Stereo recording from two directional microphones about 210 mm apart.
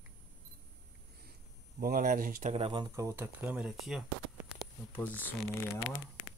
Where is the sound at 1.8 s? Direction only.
40° right (ahead or behind).